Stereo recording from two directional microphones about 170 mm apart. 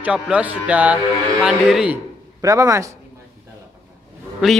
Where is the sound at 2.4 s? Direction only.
20° right (ahead or behind).